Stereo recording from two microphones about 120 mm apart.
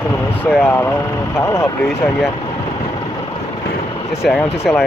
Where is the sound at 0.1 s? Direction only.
15° left (ahead or behind).